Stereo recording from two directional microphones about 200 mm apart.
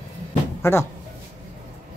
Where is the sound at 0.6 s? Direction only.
15° left (ahead or behind).